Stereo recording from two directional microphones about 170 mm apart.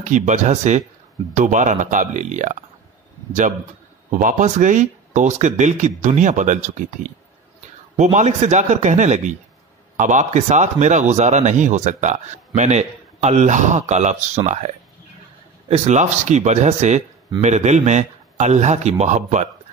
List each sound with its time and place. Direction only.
0.0 s a man's voice: 45° right (ahead or behind)
4.1 s a man's voice: 50° right (ahead or behind)